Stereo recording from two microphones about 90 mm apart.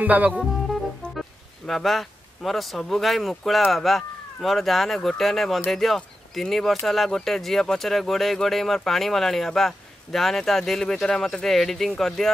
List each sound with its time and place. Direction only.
0.0 s speech: 15° right (ahead or behind)
0.4 s music: centre (ahead or behind)
1.7 s speech: centre (ahead or behind)